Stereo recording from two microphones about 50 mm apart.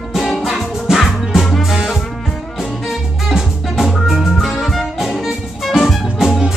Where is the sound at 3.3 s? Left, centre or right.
Centre.